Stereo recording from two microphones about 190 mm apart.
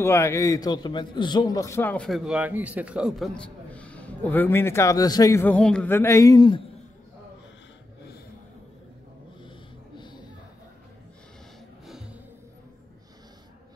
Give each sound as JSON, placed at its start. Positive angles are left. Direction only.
{"t": 0.0, "sound": "a man's voice", "side_deg": 15}
{"t": 9.9, "sound": "a sound", "side_deg": 25}
{"t": 11.8, "sound": "music", "side_deg": 0}